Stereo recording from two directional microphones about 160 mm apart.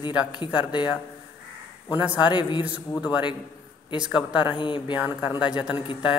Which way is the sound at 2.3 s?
30° left (ahead or behind).